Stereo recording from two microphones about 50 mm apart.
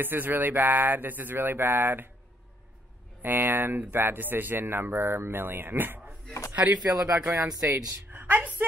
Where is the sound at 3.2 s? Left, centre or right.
Right.